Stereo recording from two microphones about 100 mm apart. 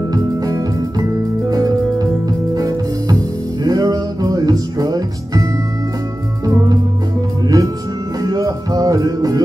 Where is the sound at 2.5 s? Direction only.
40° right (ahead or behind).